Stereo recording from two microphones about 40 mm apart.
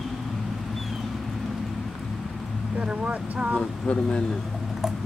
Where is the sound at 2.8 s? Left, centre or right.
Right.